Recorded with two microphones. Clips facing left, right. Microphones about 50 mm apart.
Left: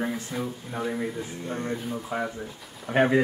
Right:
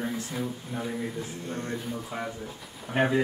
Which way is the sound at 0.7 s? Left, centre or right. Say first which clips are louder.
Left 6 dB; centre.